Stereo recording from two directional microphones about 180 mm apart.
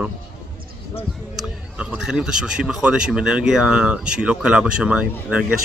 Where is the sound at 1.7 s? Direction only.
5° right (ahead or behind).